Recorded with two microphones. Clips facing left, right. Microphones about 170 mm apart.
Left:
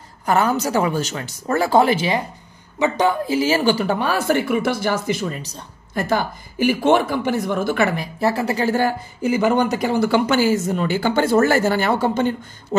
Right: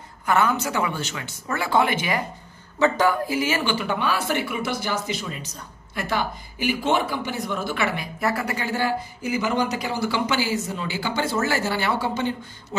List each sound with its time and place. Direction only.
0.2 s speech: 35° left (ahead or behind)